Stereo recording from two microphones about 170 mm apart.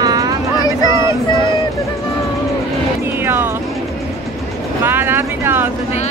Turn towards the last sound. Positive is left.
turn(degrees=-10)  # may be behind; listen again after turning